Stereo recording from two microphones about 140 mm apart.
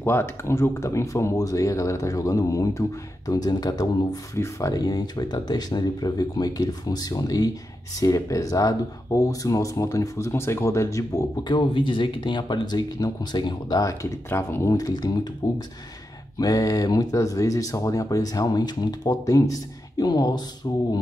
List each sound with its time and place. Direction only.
0.0 s speech: 15° left (ahead or behind)